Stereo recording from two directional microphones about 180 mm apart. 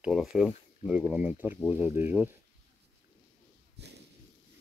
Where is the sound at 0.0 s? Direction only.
5° right (ahead or behind).